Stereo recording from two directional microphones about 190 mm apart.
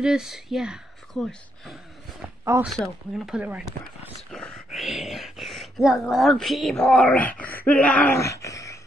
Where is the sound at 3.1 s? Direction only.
5° right (ahead or behind); by 8.8 s 15° left (ahead or behind).